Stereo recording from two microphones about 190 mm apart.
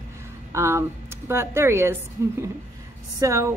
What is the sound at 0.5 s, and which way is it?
Speech, 15° right (ahead or behind).